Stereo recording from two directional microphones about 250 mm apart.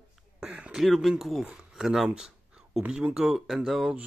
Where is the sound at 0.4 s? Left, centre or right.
Centre.